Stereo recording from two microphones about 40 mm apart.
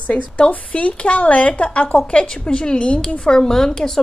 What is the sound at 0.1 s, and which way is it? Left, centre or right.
A woman's voice, left.